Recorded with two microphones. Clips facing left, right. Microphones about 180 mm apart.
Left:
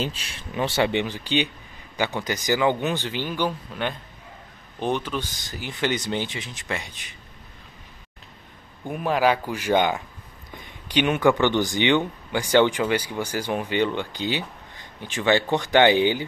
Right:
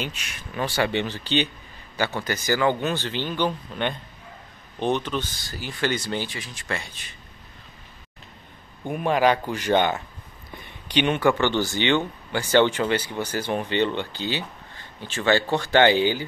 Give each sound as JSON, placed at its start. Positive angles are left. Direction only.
{"t": 0.0, "sound": "speech", "side_deg": 30}
{"t": 8.8, "sound": "speech", "side_deg": 0}